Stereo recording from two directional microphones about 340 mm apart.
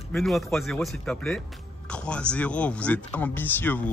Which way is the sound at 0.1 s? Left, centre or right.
Centre.